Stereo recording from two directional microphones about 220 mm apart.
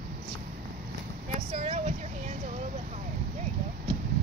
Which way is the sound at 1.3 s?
30° right (ahead or behind).